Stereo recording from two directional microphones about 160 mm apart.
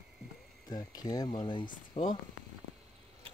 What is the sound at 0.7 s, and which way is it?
Speech, 25° left (ahead or behind).